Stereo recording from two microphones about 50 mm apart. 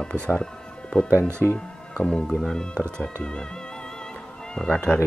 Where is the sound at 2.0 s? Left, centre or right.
Left.